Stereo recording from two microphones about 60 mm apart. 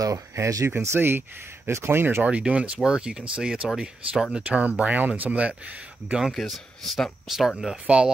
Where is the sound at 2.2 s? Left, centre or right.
Centre.